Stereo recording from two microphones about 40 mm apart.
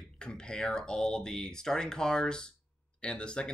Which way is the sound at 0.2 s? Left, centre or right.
Left.